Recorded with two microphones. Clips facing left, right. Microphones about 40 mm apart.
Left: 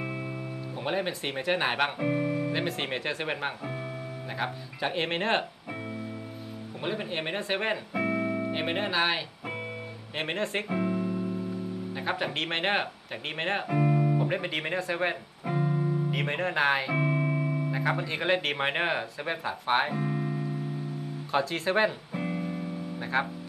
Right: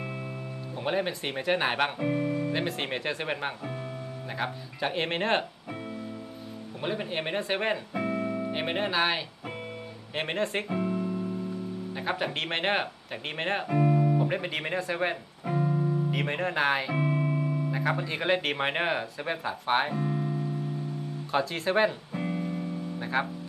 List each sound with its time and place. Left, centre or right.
0.8 s speech: centre
6.8 s speech: centre
8.5 s speech: centre
10.8 s music: centre
11.9 s speech: centre
15.5 s music: centre
16.1 s speech: centre
21.3 s music: centre